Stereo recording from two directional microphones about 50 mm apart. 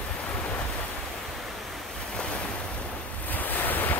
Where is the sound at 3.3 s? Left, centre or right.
Left.